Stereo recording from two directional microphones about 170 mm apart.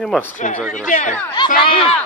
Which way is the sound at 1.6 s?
35° left (ahead or behind).